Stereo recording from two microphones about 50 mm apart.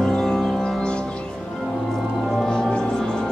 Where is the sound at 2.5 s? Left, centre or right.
Centre.